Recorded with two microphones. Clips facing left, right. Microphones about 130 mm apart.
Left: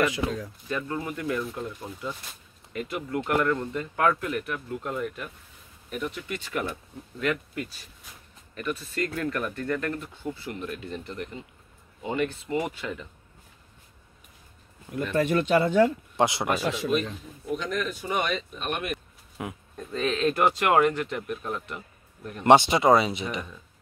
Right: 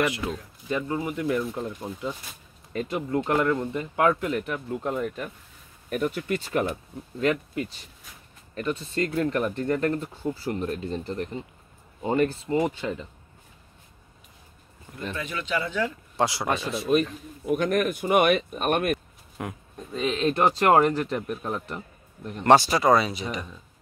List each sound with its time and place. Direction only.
0.2 s speech: 25° left (ahead or behind)
0.7 s speech: 20° right (ahead or behind)
5.9 s speech: 45° right (ahead or behind); by 13.1 s 30° right (ahead or behind)
15.1 s speech: 55° left (ahead or behind)
16.2 s speech: 20° left (ahead or behind)
17.5 s speech: 60° right (ahead or behind)
19.4 s speech: 5° left (ahead or behind)
19.9 s speech: 15° right (ahead or behind)
22.4 s speech: 20° left (ahead or behind)